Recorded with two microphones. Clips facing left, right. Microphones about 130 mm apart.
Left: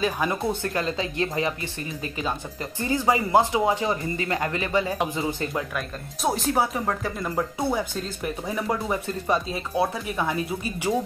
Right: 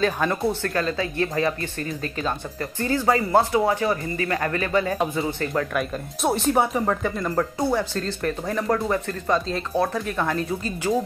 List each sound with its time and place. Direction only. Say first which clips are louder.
0.0 s speech: right 3 dB; 10° left (ahead or behind)
5.8 s speech: right 5 dB; centre (ahead or behind)